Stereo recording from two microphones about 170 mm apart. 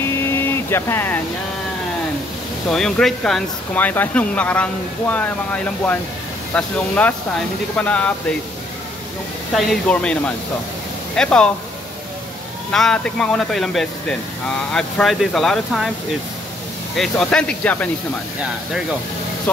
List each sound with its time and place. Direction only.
0.2 s a sound: 15° left (ahead or behind)
2.7 s speech: 5° left (ahead or behind)
9.7 s speech: 5° left (ahead or behind)
12.7 s speech: 5° left (ahead or behind)
16.9 s speech: centre (ahead or behind)